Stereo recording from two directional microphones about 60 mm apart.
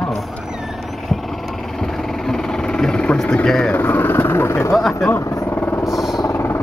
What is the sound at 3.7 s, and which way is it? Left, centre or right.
Vehicle, left.